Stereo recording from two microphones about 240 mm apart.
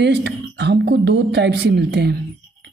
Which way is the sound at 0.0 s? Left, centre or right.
Right.